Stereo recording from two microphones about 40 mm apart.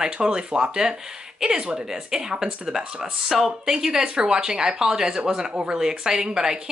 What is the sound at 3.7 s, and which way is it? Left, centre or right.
Speech, centre.